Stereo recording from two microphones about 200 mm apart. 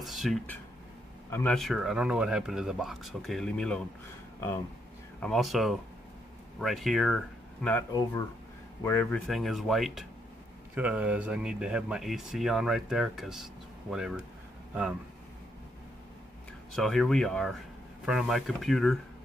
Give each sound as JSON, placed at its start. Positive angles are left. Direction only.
{"t": 0.0, "sound": "a sound", "side_deg": 0}
{"t": 1.3, "sound": "speech", "side_deg": 5}
{"t": 5.2, "sound": "speech", "side_deg": 0}
{"t": 8.8, "sound": "speech", "side_deg": 10}
{"t": 9.3, "sound": "speech", "side_deg": 0}
{"t": 16.7, "sound": "speech", "side_deg": 0}